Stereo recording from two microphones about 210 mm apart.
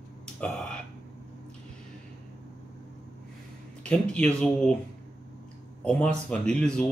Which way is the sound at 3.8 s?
5° left (ahead or behind).